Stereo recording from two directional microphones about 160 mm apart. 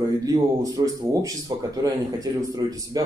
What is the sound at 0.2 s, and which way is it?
Speech, 20° right (ahead or behind).